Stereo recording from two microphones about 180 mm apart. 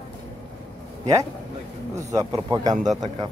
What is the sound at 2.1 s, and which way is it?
Speech, 20° right (ahead or behind).